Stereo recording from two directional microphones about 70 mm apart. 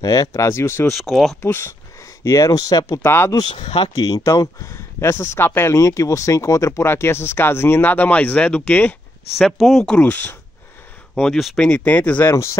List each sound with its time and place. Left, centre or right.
0.0 s speech: left
0.8 s speech: centre
1.4 s speech: left
2.2 s speech: left
3.0 s speech: left
3.9 s speech: left
4.6 s speech: left
5.8 s speech: left
9.4 s speech: centre
9.8 s speech: centre
11.3 s speech: centre
11.6 s speech: centre